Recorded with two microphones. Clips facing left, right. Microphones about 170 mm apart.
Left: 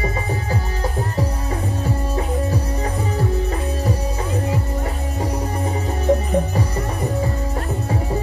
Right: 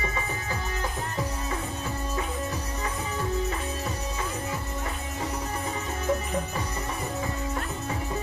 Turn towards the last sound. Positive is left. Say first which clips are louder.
# left 9 dB
turn(degrees=35)  # may be behind; listen again after turning